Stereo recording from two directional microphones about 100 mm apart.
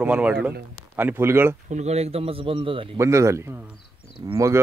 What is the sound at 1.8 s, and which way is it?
A man's voice, 90° right.